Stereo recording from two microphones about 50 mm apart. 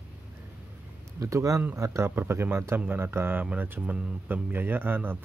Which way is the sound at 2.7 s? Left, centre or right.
Right.